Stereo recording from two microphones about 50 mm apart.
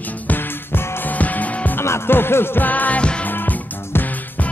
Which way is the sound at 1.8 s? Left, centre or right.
Left.